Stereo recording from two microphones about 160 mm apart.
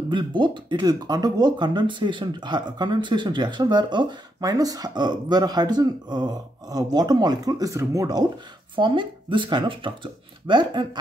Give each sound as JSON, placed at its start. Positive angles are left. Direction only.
{"t": 0.1, "sound": "speech", "side_deg": -30}